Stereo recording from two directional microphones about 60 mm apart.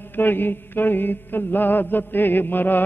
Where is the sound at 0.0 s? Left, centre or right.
Left.